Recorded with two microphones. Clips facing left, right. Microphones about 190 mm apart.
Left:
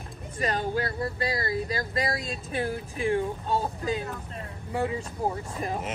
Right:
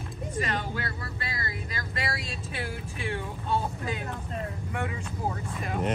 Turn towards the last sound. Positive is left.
turn(degrees=30)  # may be behind; listen again after turning